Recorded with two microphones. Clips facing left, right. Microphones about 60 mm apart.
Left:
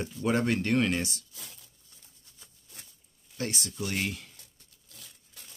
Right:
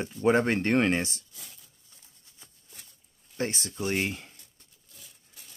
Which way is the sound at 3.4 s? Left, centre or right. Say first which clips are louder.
Right 3 dB; right.